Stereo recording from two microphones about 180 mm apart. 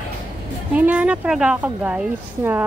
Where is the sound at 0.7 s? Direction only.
5° right (ahead or behind).